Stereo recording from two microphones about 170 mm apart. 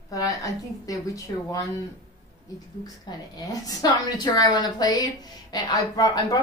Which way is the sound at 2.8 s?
20° left (ahead or behind).